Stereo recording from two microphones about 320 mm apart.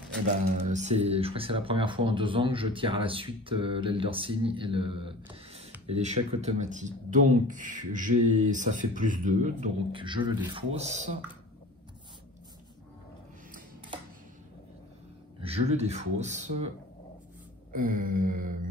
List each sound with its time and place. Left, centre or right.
0.7 s speech: right
15.4 s speech: centre
17.7 s speech: right